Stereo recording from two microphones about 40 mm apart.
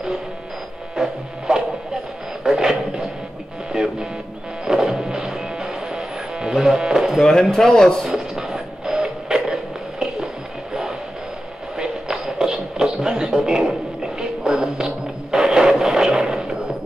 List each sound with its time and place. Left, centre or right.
0.9 s music: centre
2.4 s a sound: centre
3.7 s music: centre
7.5 s a man's voice: centre
8.0 s a sound: centre
11.7 s music: centre
15.3 s printer: centre
15.8 s music: centre